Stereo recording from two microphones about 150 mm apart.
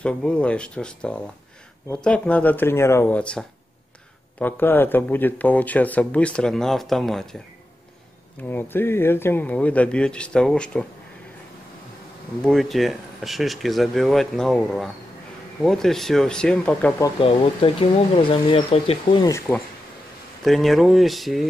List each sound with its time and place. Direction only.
0.0 s speech: 10° left (ahead or behind)
8.4 s speech: 15° left (ahead or behind)
12.4 s speech: centre (ahead or behind)
17.2 s speech: 35° left (ahead or behind)
19.5 s speech: centre (ahead or behind)